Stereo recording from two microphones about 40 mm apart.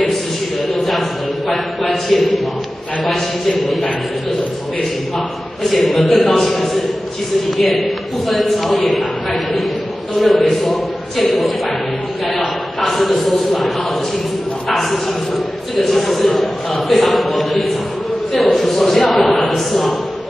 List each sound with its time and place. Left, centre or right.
0.7 s a sound: centre
5.1 s a man's voice: centre
14.7 s a man's voice: centre